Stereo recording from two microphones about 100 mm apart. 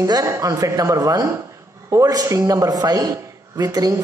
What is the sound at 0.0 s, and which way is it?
A woman's voice, 30° right (ahead or behind).